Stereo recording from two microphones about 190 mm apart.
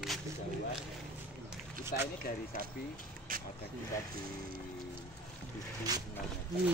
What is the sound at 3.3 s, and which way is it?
Vehicle, 50° right (ahead or behind).